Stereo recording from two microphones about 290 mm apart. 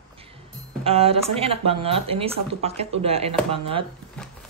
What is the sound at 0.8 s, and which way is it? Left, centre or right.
Speech, centre.